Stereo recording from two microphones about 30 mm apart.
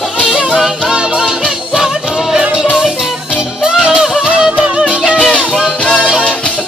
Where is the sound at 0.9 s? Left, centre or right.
Right.